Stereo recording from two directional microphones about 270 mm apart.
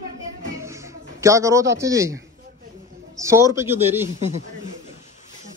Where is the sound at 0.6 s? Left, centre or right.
Centre.